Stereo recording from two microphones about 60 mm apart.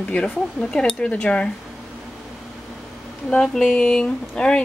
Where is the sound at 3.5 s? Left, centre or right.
Centre.